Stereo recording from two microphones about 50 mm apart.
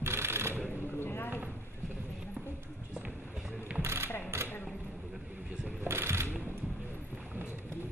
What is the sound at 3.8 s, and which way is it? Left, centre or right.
Mechanisms, right.